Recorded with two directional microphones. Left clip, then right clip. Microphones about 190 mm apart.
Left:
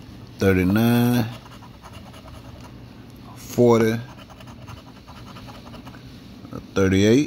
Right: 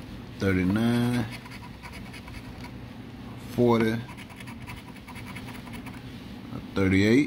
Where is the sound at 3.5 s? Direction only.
40° left (ahead or behind).